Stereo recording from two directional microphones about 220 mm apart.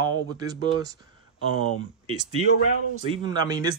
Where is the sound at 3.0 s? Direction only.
20° right (ahead or behind).